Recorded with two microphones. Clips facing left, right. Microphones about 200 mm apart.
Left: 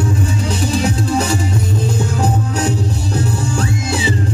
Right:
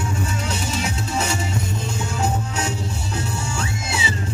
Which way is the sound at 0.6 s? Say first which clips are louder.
Left 9 dB; 35° left (ahead or behind).